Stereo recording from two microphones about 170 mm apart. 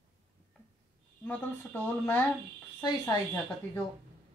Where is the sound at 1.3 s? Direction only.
10° left (ahead or behind).